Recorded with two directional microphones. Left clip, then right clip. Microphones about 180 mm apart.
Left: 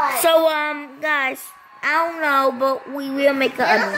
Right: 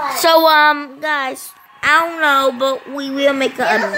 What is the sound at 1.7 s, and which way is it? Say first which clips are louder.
Speech: right 6 dB; 20° right (ahead or behind).